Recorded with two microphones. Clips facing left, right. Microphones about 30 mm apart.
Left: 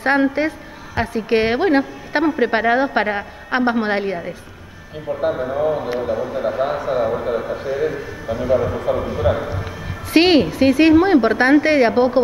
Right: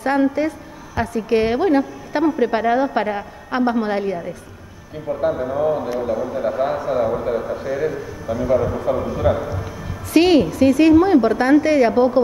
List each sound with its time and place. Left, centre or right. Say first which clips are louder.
0.0 s a woman's voice: left 1 dB; left
10.1 s a woman's voice: even; left